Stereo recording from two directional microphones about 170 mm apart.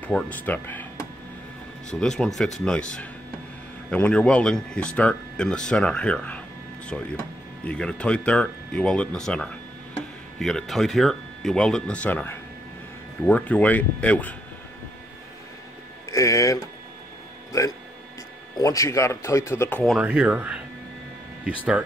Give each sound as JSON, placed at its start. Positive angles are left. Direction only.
{"t": 0.0, "sound": "speech", "side_deg": 10}
{"t": 2.0, "sound": "speech", "side_deg": 5}
{"t": 7.6, "sound": "speech", "side_deg": 5}
{"t": 16.1, "sound": "speech", "side_deg": 20}
{"t": 17.5, "sound": "speech", "side_deg": 20}
{"t": 19.8, "sound": "speech", "side_deg": -5}